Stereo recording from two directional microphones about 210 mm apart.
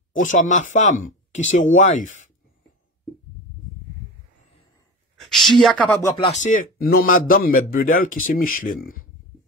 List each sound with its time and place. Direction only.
0.1 s speech: 35° left (ahead or behind)
5.2 s speech: centre (ahead or behind)
6.1 s speech: 25° left (ahead or behind)
6.4 s a man's voice: 45° left (ahead or behind)